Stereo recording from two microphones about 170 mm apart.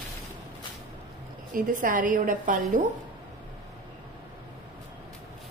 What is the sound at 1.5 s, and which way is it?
A woman's voice, 50° right (ahead or behind).